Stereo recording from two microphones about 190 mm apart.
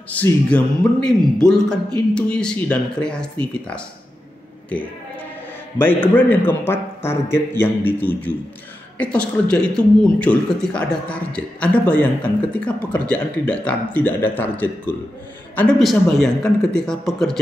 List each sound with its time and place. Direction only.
0.1 s speech: 10° left (ahead or behind)
5.8 s speech: 10° left (ahead or behind)